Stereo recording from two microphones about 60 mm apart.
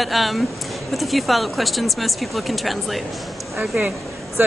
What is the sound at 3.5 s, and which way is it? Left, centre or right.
Speech, right.